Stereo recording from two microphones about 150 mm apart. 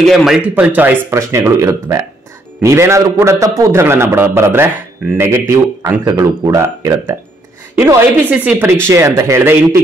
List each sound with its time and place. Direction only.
0.0 s a man's voice: centre (ahead or behind); by 9.8 s 15° right (ahead or behind)